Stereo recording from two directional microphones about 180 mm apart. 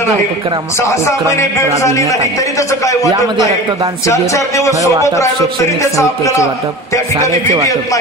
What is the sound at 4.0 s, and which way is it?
Speech, 15° left (ahead or behind).